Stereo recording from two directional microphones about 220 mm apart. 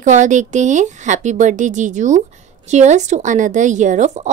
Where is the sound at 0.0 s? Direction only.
35° right (ahead or behind).